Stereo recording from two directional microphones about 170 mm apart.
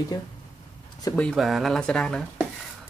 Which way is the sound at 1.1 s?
5° left (ahead or behind).